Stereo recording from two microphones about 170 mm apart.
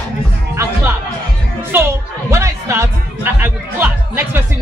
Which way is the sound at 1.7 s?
10° right (ahead or behind).